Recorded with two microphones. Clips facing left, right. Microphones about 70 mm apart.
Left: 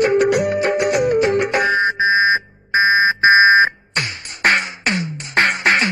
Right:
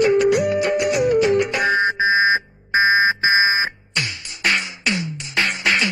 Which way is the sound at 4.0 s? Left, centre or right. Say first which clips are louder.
Left 3 dB; left.